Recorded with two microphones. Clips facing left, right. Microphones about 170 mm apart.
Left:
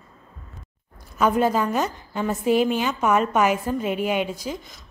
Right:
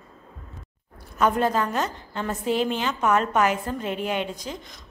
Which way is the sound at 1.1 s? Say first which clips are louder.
Left 2 dB; 5° left (ahead or behind).